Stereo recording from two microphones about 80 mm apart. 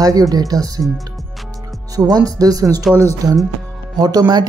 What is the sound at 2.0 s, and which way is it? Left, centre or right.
Speech, right.